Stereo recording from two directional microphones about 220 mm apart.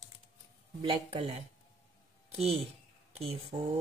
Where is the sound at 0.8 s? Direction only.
25° right (ahead or behind).